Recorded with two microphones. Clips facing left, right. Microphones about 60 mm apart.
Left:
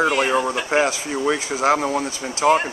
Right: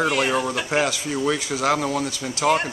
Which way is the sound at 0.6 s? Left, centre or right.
Left.